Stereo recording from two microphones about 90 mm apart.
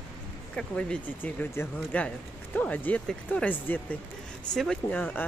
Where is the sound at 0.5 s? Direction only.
10° left (ahead or behind).